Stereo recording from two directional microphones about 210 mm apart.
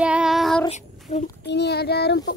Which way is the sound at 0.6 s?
30° left (ahead or behind).